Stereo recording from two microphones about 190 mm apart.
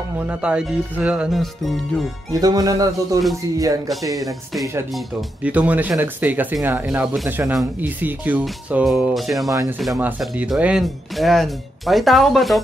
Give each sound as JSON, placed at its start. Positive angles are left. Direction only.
{"t": 0.2, "sound": "speech", "side_deg": -5}
{"t": 2.4, "sound": "music", "side_deg": -20}
{"t": 4.1, "sound": "speech", "side_deg": 0}
{"t": 9.5, "sound": "speech", "side_deg": -15}
{"t": 9.8, "sound": "speech", "side_deg": -5}